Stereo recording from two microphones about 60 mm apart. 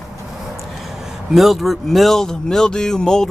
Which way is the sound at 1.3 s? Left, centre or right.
Centre.